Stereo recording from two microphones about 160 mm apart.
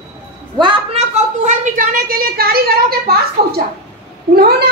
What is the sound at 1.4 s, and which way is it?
A woman's voice, 50° right (ahead or behind).